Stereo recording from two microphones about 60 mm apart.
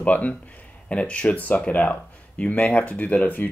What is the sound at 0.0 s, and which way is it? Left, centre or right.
Speech, left.